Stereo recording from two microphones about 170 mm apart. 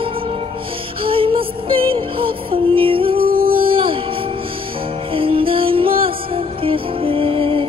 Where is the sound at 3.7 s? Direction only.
30° right (ahead or behind).